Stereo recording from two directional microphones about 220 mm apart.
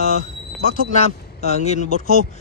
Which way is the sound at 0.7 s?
30° left (ahead or behind).